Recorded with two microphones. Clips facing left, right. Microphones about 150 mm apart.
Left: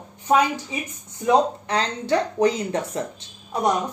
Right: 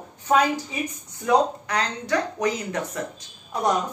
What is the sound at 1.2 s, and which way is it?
Speech, 25° left (ahead or behind).